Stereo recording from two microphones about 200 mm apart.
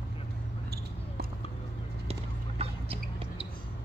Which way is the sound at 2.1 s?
30° right (ahead or behind).